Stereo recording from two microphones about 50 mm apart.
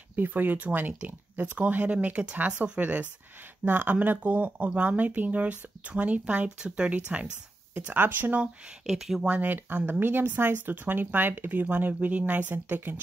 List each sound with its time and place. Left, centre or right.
0.1 s speech: right
7.9 s speech: right
8.9 s speech: centre
9.4 s speech: right